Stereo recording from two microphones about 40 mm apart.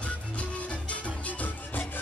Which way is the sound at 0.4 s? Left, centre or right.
Left.